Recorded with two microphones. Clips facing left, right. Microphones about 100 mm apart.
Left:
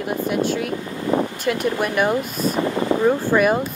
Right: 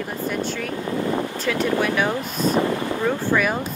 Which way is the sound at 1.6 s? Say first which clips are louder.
Right 1 dB; 10° left (ahead or behind).